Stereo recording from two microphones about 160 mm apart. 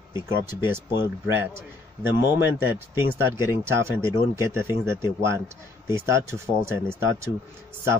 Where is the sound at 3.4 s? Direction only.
15° right (ahead or behind).